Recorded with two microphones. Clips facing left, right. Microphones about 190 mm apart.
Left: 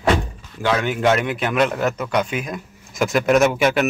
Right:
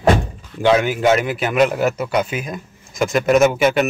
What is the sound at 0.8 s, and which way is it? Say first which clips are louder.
A man's voice: right 2 dB; 5° right (ahead or behind).